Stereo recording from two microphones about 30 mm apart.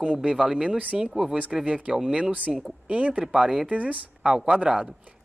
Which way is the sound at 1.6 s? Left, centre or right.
Right.